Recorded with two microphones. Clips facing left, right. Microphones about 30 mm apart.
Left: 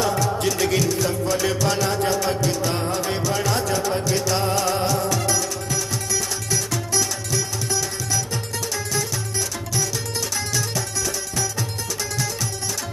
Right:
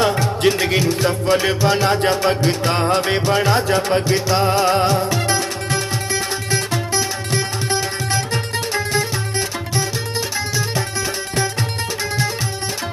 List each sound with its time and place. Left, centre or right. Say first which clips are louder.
0.0 s music: right 5 dB; right
7.3 s music: right 4 dB; right